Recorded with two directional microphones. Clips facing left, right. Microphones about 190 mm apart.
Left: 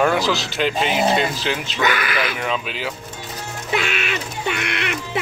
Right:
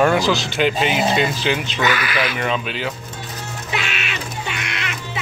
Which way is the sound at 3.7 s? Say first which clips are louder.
Left 4 dB; 50° left (ahead or behind).